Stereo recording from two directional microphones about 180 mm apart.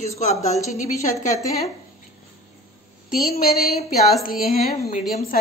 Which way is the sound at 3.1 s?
55° left (ahead or behind).